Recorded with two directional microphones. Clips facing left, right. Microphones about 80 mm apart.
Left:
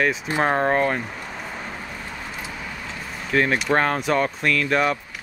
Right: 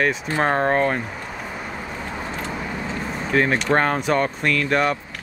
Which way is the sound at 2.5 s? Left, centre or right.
Right.